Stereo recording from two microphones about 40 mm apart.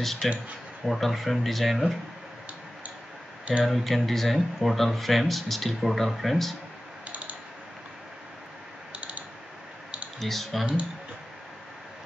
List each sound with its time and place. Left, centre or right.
0.0 s speech: centre
3.6 s speech: centre
8.9 s mechanisms: right
10.2 s speech: centre